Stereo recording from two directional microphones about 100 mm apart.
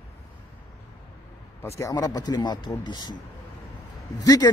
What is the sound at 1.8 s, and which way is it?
A man's voice, 40° left (ahead or behind).